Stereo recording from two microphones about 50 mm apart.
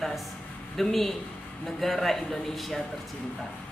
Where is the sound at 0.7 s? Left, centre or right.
Centre.